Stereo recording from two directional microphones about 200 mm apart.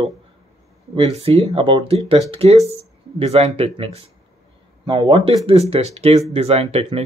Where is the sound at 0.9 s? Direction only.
30° right (ahead or behind).